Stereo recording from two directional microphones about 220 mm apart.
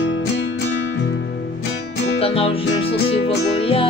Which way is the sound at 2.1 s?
25° left (ahead or behind).